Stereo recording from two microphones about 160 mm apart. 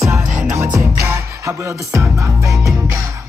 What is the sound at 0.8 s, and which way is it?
Music, 20° right (ahead or behind).